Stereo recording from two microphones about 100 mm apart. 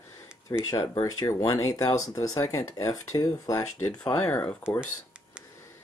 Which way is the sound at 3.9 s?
10° left (ahead or behind).